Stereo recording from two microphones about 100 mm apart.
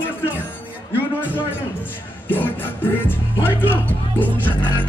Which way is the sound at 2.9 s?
20° left (ahead or behind).